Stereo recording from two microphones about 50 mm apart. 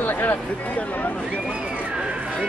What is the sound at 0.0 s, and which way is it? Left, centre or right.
Speech, left.